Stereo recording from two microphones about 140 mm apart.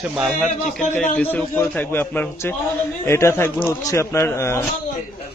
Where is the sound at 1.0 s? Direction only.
10° left (ahead or behind).